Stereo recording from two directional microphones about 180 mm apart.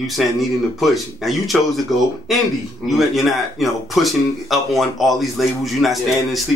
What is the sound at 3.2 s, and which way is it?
Speech, centre (ahead or behind).